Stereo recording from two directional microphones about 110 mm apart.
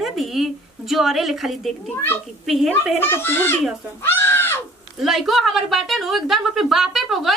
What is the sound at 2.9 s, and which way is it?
Speech, 20° left (ahead or behind).